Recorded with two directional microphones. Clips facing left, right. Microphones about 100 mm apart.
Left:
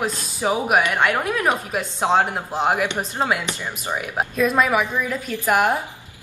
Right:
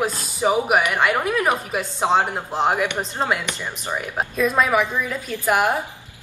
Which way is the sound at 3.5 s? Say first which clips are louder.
Left 1 dB; 15° left (ahead or behind).